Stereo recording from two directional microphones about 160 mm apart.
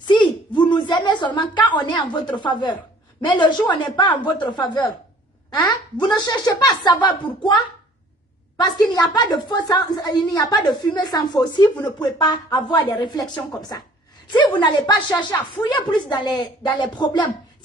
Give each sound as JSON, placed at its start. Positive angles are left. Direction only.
{"t": 0.1, "sound": "a woman's voice", "side_deg": 30}
{"t": 8.5, "sound": "speech", "side_deg": 25}